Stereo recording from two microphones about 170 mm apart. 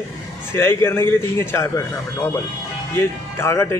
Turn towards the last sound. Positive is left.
turn(degrees=15)  # may be behind; listen again after turning